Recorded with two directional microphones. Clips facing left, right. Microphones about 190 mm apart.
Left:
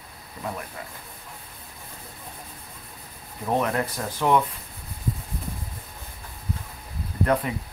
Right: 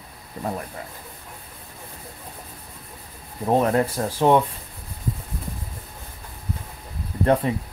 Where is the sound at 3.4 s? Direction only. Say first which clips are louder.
Right 5 dB; 30° right (ahead or behind).